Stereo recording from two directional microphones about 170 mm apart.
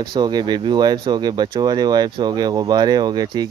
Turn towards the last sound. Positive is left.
turn(degrees=-25)  # may be behind; listen again after turning